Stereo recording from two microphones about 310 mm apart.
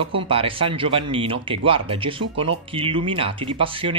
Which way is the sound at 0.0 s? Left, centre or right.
Centre.